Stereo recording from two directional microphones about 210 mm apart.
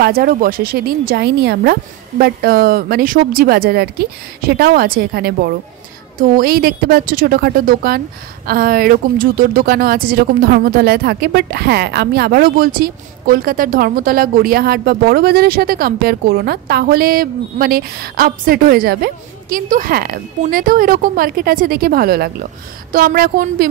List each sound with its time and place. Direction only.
0.0 s speech: 45° right (ahead or behind)